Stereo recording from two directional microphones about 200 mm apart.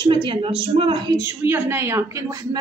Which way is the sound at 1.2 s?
10° right (ahead or behind).